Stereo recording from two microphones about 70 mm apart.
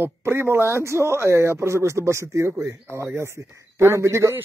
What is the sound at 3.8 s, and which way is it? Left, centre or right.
Speech, right.